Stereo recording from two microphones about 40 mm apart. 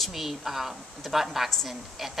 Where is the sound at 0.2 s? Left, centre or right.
Centre.